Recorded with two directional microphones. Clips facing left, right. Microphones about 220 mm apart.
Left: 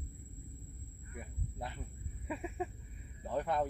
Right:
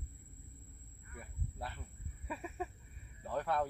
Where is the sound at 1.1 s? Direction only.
20° left (ahead or behind).